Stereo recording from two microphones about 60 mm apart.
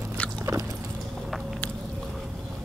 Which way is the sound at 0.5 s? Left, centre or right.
Right.